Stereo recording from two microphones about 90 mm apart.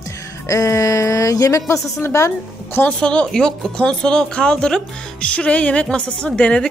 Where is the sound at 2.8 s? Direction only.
10° left (ahead or behind).